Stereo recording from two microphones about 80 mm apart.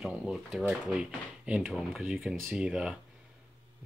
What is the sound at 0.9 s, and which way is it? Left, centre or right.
Speech, centre.